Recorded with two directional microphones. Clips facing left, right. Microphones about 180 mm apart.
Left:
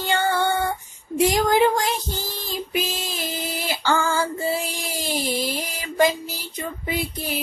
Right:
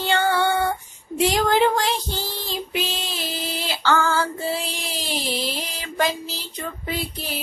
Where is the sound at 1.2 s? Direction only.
10° left (ahead or behind).